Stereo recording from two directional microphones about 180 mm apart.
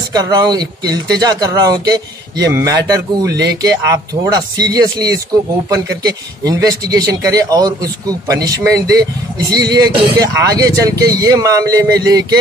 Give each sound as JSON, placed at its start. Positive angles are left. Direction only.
{"t": 0.1, "sound": "speech", "side_deg": -20}